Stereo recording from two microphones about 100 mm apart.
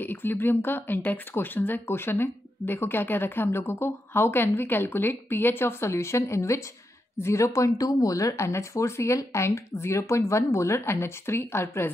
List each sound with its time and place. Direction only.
0.0 s speech: 20° left (ahead or behind)